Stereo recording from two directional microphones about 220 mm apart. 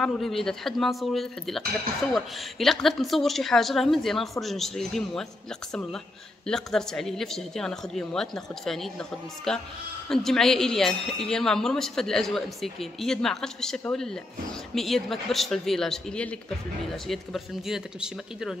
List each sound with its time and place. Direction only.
0.0 s speech: centre (ahead or behind)